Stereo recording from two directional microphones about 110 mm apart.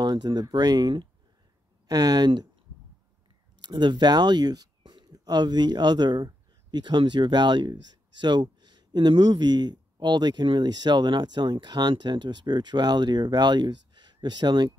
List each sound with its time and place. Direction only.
0.0 s speech: 40° right (ahead or behind)
3.6 s speech: 45° right (ahead or behind)